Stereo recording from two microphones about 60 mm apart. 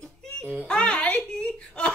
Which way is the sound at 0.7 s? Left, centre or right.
Centre.